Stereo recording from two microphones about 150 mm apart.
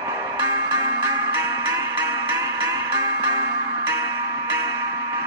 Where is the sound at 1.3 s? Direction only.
20° right (ahead or behind).